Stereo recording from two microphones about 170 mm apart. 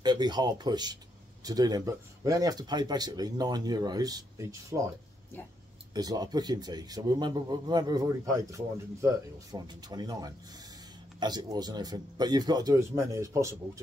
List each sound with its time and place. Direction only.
0.0 s a man's voice: 25° right (ahead or behind)
5.9 s a man's voice: 25° right (ahead or behind)